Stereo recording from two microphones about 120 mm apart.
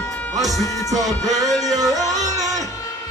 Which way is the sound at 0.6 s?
25° left (ahead or behind).